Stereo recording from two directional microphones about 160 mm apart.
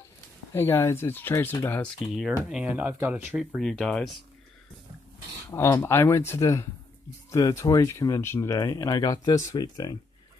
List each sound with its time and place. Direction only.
0.6 s speech: 15° left (ahead or behind)
2.5 s speech: 10° right (ahead or behind)
3.3 s speech: centre (ahead or behind)
5.5 s speech: 15° left (ahead or behind)